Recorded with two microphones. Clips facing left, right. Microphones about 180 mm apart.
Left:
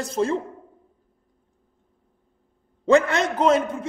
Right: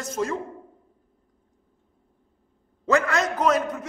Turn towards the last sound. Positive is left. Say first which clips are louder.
# left 3 dB
turn(degrees=25)  # may be behind; listen again after turning